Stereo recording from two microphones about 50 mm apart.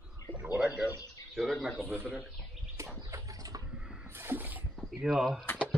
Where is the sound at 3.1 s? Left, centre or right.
Right.